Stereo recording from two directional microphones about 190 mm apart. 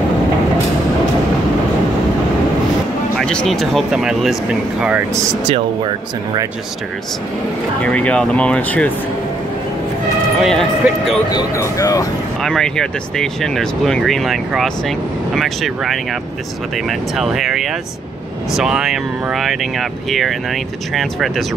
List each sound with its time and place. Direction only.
3.2 s speech: 5° left (ahead or behind)
5.5 s speech: 25° right (ahead or behind)
7.8 s speech: 5° left (ahead or behind)
10.4 s speech: centre (ahead or behind)
11.2 s speech: 15° left (ahead or behind)
12.4 s speech: centre (ahead or behind)